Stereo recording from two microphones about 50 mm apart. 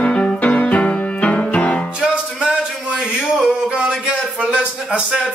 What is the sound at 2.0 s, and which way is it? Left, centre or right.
Music, centre.